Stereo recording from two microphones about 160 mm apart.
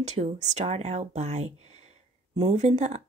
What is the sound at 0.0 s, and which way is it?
Speech, 45° right (ahead or behind).